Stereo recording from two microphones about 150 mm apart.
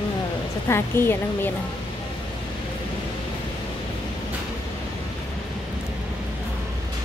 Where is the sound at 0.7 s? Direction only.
15° left (ahead or behind).